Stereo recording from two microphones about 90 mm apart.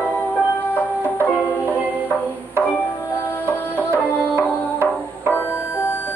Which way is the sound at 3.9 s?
25° right (ahead or behind).